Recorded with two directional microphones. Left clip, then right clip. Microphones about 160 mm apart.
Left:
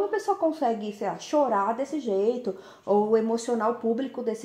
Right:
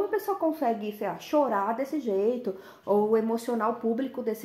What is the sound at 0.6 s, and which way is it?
A woman's voice, 20° right (ahead or behind).